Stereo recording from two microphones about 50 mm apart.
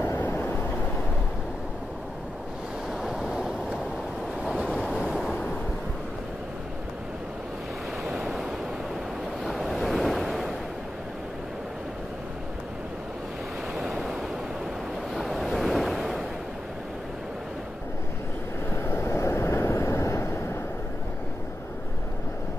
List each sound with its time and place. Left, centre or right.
2.9 s waves: centre
4.7 s waves: centre
8.0 s waves: centre
13.7 s waves: centre
15.1 s waves: centre
18.7 s waves: left